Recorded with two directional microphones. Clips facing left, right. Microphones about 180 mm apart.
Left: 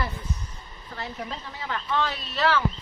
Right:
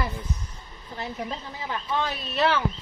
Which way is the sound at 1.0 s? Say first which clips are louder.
Right 2 dB; 15° right (ahead or behind).